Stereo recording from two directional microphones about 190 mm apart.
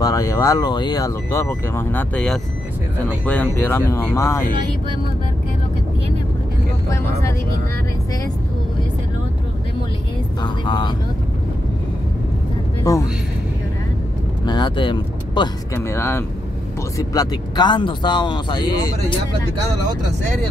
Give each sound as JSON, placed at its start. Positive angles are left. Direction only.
{"t": 0.0, "sound": "speech", "side_deg": 15}
{"t": 10.4, "sound": "speech", "side_deg": 25}
{"t": 12.9, "sound": "speech", "side_deg": 15}
{"t": 14.4, "sound": "speech", "side_deg": 25}